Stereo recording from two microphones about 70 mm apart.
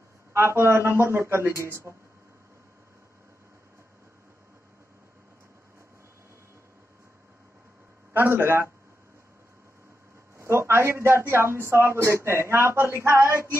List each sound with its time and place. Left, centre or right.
0.3 s a man's voice: right
8.1 s a man's voice: right
10.3 s a man's voice: right